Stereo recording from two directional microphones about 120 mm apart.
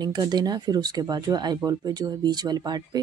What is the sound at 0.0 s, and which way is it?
Speech, 35° right (ahead or behind).